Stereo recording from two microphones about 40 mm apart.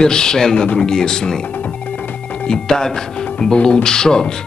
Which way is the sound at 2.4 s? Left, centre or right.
Centre.